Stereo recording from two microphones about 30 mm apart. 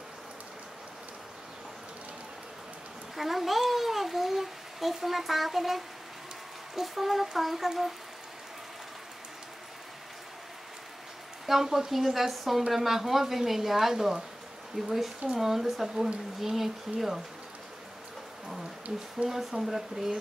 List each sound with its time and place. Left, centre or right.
3.2 s a sound: centre
6.7 s speech: centre
11.4 s speech: centre
19.2 s speech: right
19.6 s speech: centre